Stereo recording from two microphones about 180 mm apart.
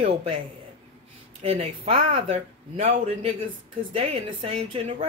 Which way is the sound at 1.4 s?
30° right (ahead or behind).